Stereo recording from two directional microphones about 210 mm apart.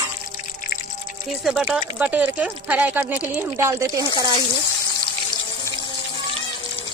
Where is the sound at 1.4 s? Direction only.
Centre (ahead or behind).